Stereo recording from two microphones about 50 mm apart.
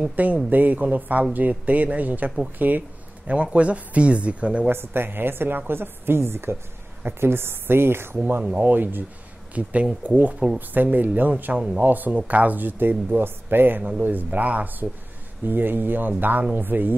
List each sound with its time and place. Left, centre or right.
0.1 s speech: right
3.3 s speech: right
4.6 s speech: right
8.5 s speech: right
9.5 s speech: right
11.5 s speech: centre
11.8 s speech: right